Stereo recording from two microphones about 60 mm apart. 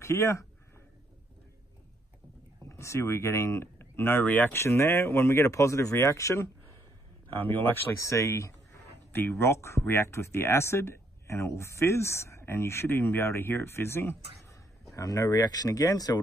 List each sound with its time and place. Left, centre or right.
0.0 s speech: left
2.7 s speech: left
4.2 s speech: left
4.5 s speech: left
7.4 s speech: left
8.0 s speech: left
9.1 s speech: left
14.5 s speech: left